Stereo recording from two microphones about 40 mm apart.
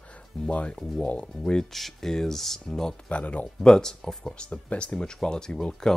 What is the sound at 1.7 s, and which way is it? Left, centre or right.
Speech, centre.